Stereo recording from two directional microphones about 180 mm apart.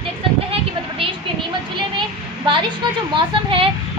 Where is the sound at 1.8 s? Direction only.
25° right (ahead or behind).